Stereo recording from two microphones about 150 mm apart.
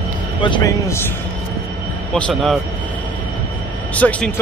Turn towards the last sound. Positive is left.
turn(degrees=10)  # may be behind; listen again after turning